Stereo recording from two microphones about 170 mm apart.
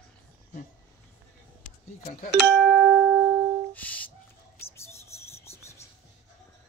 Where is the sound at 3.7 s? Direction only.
10° left (ahead or behind).